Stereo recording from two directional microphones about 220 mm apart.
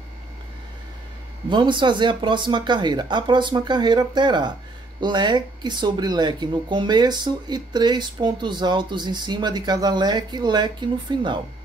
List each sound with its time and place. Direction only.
1.5 s speech: 20° right (ahead or behind)